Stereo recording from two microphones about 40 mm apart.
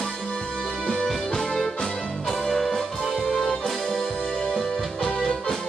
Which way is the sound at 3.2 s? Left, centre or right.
Centre.